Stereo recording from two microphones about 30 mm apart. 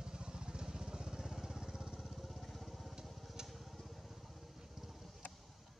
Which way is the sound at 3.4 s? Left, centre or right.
Centre.